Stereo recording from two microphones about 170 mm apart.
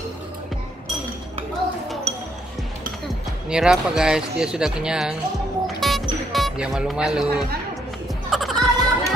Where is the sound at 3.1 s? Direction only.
5° right (ahead or behind).